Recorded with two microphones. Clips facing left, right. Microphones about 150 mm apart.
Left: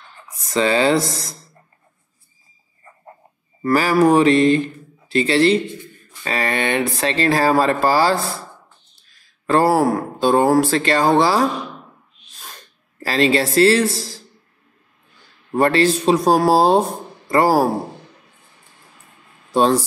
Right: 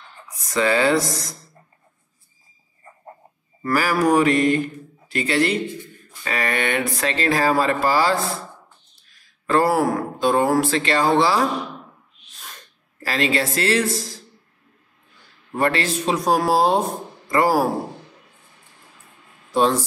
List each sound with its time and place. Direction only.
0.5 s mantra: 25° left (ahead or behind)
3.6 s mantra: 25° left (ahead or behind)
6.2 s speech: 30° left (ahead or behind)
9.5 s speech: 30° left (ahead or behind)
13.0 s speech: 30° left (ahead or behind)
15.5 s speech: 35° left (ahead or behind)
19.5 s speech: 35° left (ahead or behind)